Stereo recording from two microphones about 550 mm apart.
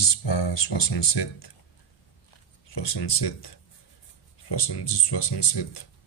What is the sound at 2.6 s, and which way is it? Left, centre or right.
Speech, left.